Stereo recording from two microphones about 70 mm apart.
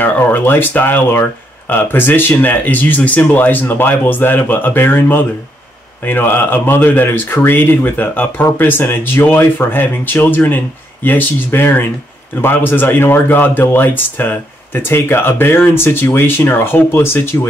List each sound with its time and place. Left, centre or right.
0.0 s speech: left